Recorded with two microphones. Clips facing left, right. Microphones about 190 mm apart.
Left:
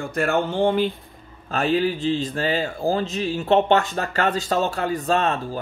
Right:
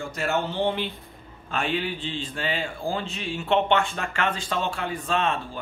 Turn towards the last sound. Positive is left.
turn(degrees=40)  # may be behind; listen again after turning